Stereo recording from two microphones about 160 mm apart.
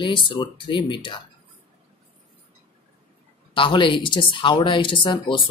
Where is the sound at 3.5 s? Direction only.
30° left (ahead or behind).